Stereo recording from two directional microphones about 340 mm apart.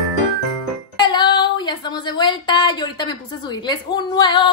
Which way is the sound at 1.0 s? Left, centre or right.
Centre.